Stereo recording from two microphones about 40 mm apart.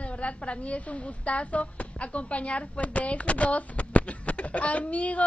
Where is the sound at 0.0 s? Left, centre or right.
Left.